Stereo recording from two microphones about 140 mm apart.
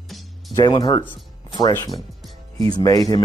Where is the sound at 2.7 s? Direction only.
25° left (ahead or behind).